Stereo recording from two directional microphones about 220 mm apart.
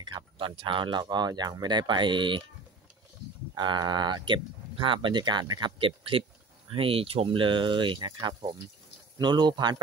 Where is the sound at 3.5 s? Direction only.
20° right (ahead or behind).